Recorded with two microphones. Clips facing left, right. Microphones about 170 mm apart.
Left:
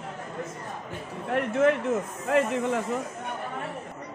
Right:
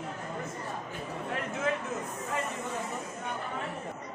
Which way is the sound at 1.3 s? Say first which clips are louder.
Left 10 dB; 70° left (ahead or behind).